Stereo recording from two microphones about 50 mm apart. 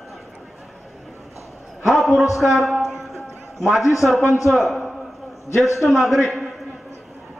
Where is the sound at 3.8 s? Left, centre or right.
Left.